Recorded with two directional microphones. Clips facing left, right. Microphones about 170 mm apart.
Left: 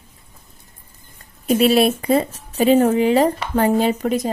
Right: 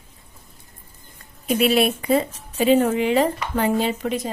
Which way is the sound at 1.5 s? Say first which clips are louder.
Left 4 dB; 40° left (ahead or behind).